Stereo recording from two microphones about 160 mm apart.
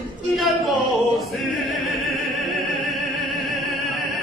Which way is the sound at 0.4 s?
Centre (ahead or behind).